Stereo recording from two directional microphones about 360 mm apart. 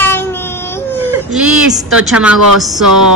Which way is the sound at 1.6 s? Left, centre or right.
Centre.